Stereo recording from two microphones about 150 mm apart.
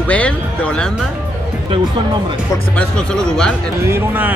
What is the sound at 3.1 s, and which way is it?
Speech, 5° left (ahead or behind).